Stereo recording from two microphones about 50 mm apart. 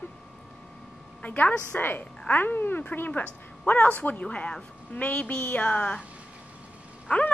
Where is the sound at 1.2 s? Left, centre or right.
Left.